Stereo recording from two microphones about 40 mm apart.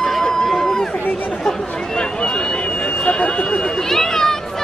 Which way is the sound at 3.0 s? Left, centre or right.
Left.